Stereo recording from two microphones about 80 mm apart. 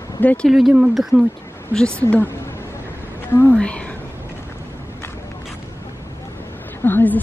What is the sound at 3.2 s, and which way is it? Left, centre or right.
Speech, left.